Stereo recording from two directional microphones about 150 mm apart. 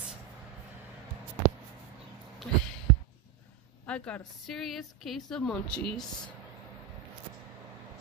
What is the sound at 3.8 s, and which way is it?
A woman's voice, 10° left (ahead or behind).